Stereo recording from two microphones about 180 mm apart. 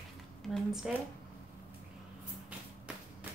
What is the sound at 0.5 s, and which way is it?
Speech, centre (ahead or behind).